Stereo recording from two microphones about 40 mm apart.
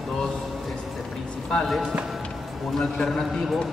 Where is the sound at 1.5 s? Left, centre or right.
Left.